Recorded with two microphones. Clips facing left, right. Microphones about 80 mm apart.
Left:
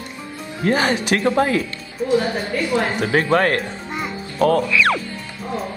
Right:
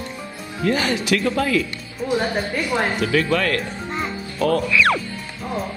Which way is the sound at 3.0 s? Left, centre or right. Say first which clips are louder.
Left 5 dB; left.